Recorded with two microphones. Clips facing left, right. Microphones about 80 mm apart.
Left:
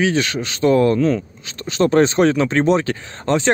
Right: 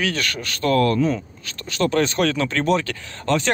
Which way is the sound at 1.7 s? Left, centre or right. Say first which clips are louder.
Left 6 dB; left.